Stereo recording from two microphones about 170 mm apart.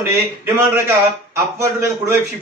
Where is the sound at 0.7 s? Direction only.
15° right (ahead or behind).